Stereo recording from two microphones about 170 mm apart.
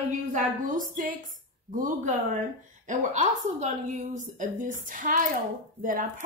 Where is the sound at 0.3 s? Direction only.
50° right (ahead or behind).